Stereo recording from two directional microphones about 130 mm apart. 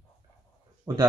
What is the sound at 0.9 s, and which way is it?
Speech, 30° right (ahead or behind).